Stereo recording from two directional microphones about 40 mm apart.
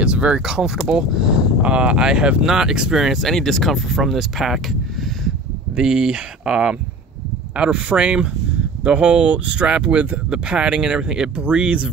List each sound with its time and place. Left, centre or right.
0.0 s a sound: right
0.5 s speech: centre
1.6 s speech: right; by 3.2 s centre
3.2 s speech: centre
5.8 s speech: right